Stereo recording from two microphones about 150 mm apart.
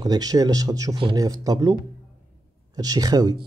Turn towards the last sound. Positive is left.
turn(degrees=-25)  # may be behind; listen again after turning